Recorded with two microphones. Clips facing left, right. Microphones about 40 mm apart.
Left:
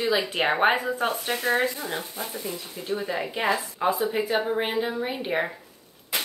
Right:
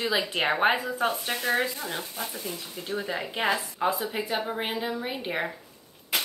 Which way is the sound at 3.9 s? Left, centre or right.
Centre.